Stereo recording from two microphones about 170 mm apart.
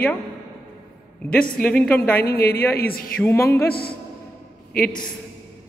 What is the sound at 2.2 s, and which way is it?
Speech, 65° left (ahead or behind).